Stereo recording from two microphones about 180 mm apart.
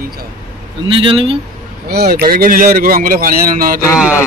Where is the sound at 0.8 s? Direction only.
30° right (ahead or behind).